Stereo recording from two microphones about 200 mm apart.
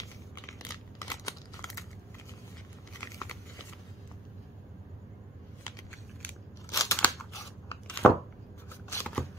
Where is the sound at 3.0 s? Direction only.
15° left (ahead or behind).